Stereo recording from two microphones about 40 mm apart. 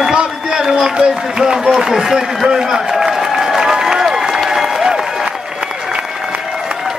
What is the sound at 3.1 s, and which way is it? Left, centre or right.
Applause, centre.